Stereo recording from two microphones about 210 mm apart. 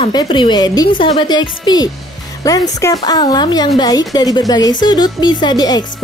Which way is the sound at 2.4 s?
15° left (ahead or behind).